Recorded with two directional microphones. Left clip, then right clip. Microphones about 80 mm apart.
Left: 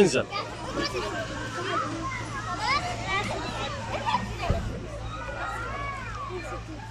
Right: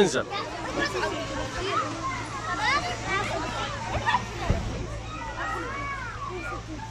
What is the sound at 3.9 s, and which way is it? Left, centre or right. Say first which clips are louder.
Hubbub: right 2 dB; centre.